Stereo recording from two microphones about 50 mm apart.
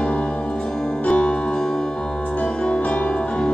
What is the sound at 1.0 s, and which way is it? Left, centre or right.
Music, left.